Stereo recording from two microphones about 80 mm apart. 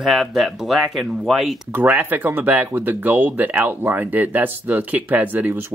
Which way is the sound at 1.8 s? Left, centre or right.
Right.